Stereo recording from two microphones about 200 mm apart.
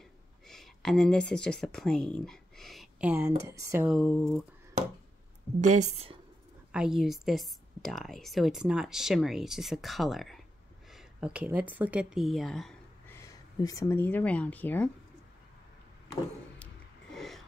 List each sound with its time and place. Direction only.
0.5 s speech: centre (ahead or behind); by 3.9 s 15° right (ahead or behind)
3.9 s a woman's voice: centre (ahead or behind)
5.6 s speech: 35° right (ahead or behind)
6.7 s a woman's voice: 5° right (ahead or behind)
13.1 s speech: 15° left (ahead or behind)
17.1 s a sound: centre (ahead or behind)